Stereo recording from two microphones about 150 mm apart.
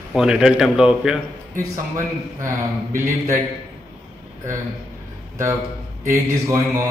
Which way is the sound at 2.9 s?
20° right (ahead or behind).